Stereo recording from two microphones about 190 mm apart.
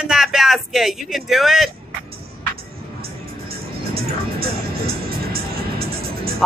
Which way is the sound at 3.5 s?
55° right (ahead or behind).